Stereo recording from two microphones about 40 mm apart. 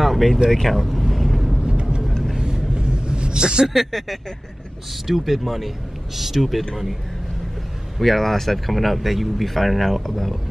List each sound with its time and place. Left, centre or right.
0.0 s a sound: centre
0.5 s vehicle: centre
1.7 s music: right
2.3 s a sound: centre
3.6 s speech: centre
8.0 s speech: centre